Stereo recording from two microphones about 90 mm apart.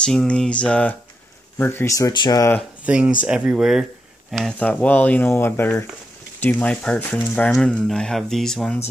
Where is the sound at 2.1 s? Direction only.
60° left (ahead or behind).